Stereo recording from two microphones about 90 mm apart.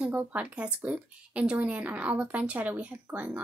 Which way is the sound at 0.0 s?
20° right (ahead or behind).